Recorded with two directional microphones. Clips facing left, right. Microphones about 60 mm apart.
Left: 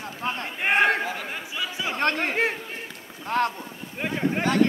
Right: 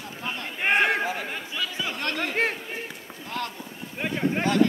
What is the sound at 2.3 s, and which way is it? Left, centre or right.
Run, centre.